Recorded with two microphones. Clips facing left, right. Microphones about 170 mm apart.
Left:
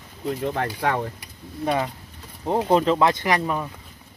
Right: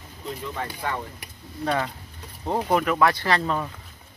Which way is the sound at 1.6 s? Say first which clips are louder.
Left 2 dB; 15° left (ahead or behind).